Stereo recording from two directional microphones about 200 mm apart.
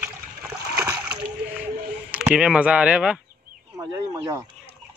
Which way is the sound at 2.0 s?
5° right (ahead or behind).